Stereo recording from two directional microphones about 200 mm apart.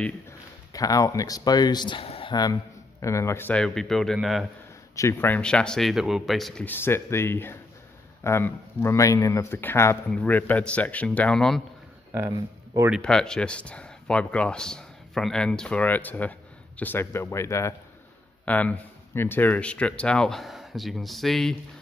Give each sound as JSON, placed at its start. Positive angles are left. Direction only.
{"t": 0.7, "sound": "speech", "side_deg": 15}
{"t": 4.9, "sound": "speech", "side_deg": 15}
{"t": 12.1, "sound": "speech", "side_deg": -15}
{"t": 12.9, "sound": "speech", "side_deg": 5}